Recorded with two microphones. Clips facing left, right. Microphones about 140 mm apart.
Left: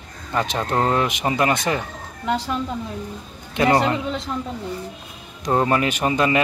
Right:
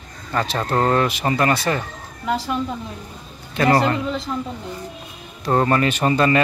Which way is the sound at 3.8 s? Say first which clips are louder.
Right 1 dB; centre (ahead or behind).